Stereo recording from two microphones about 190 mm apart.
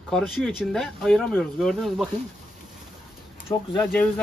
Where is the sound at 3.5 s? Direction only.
20° left (ahead or behind).